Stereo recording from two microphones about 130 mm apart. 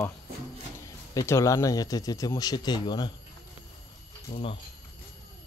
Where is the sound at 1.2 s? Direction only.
20° left (ahead or behind).